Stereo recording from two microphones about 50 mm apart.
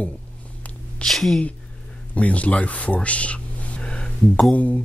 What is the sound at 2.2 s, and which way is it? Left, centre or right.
Speech, left.